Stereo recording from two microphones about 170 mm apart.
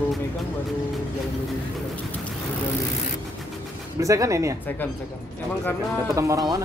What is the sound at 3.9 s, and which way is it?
Speech, 20° right (ahead or behind).